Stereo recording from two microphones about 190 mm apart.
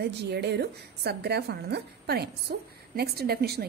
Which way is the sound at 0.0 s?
60° right (ahead or behind).